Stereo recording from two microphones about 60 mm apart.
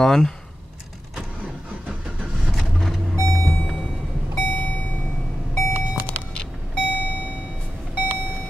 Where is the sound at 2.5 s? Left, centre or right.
Centre.